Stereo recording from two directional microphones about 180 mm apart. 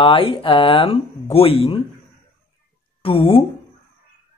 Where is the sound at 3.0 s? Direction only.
30° left (ahead or behind).